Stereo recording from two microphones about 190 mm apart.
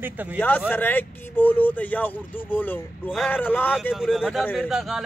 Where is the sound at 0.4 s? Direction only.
10° left (ahead or behind).